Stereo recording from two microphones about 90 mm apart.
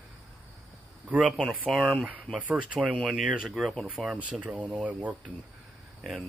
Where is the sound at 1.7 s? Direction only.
Centre (ahead or behind).